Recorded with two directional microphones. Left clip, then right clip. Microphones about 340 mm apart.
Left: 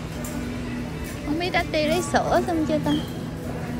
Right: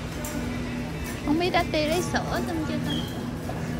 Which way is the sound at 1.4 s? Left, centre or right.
Centre.